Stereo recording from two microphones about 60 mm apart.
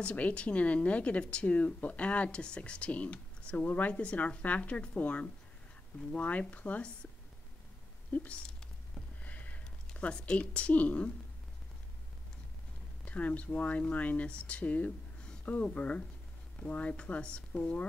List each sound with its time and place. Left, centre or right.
0.0 s speech: left
8.1 s speech: left
9.2 s a sound: left
13.0 s speech: left